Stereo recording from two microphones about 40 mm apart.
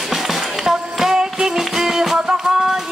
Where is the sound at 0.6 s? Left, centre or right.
Centre.